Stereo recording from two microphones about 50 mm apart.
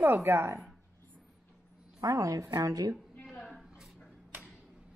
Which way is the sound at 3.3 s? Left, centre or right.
Centre.